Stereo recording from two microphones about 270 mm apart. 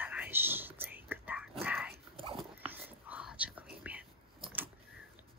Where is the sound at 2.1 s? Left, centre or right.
Centre.